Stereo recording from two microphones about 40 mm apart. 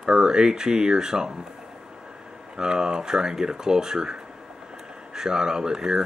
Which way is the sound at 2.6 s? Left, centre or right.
Right.